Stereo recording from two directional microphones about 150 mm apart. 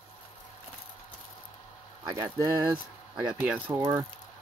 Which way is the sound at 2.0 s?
20° right (ahead or behind).